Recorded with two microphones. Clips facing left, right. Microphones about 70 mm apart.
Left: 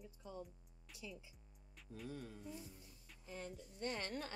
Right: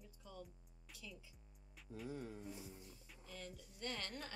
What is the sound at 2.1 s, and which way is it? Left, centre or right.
Music, centre.